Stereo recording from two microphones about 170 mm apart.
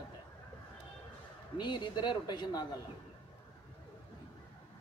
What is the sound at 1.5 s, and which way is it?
A man's voice, 25° left (ahead or behind).